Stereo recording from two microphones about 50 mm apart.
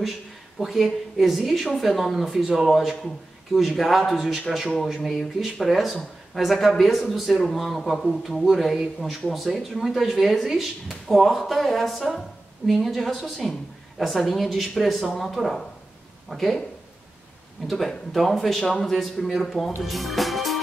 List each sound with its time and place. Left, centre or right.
0.6 s speech: centre
17.6 s speech: centre
19.8 s music: centre